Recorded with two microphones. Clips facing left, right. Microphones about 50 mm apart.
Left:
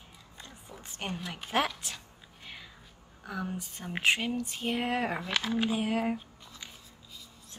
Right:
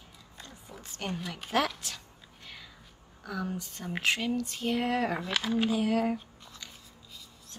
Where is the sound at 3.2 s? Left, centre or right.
Centre.